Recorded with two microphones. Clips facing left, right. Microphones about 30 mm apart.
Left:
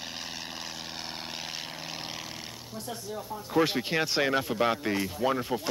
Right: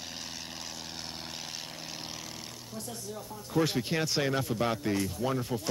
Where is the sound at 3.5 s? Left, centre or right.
Left.